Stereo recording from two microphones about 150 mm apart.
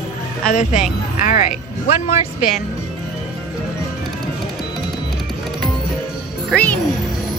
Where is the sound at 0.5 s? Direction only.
55° left (ahead or behind).